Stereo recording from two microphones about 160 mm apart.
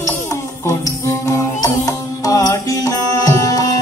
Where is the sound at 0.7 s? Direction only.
20° left (ahead or behind).